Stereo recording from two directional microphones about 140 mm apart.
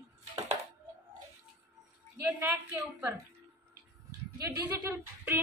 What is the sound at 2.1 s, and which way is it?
Speech, 20° right (ahead or behind).